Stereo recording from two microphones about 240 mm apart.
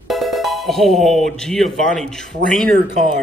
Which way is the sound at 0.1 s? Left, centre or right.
Centre.